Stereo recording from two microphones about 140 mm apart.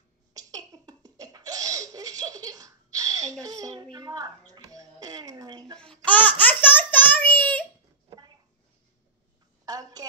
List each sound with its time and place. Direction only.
0.3 s laughter: 25° right (ahead or behind)
3.9 s music: 25° right (ahead or behind)
6.0 s babbling: 10° left (ahead or behind)
9.7 s a sound: 25° right (ahead or behind)